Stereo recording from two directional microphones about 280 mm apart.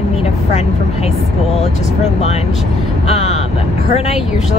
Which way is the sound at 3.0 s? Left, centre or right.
Left.